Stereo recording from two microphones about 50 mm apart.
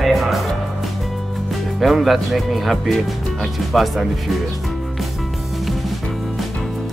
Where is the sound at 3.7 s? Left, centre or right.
Centre.